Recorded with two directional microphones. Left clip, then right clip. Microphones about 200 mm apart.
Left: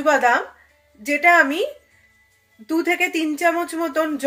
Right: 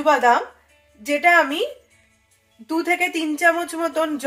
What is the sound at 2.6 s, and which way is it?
Speech, 50° left (ahead or behind).